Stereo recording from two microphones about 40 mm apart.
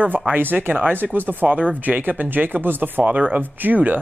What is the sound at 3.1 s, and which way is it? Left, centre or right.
Speech, right.